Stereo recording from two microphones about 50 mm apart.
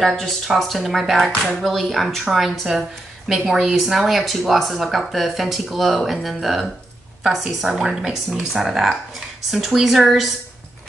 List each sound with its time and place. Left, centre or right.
0.0 s speech: centre